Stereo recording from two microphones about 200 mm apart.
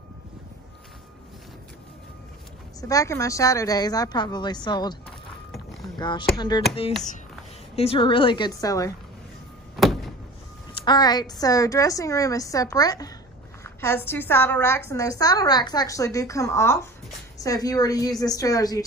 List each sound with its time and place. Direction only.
2.8 s a woman's voice: 15° left (ahead or behind)
5.9 s a woman's voice: 20° left (ahead or behind)
7.7 s a woman's voice: 30° left (ahead or behind)
9.8 s door: centre (ahead or behind)
10.7 s a woman's voice: 25° left (ahead or behind)